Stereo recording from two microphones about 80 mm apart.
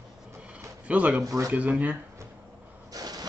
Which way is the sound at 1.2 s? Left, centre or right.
Right.